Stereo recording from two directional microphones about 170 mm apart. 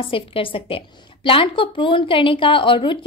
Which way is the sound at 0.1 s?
30° left (ahead or behind).